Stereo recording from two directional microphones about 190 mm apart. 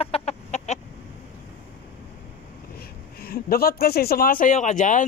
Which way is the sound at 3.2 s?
50° left (ahead or behind).